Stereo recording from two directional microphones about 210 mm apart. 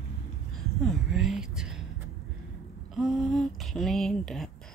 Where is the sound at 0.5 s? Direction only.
Centre (ahead or behind).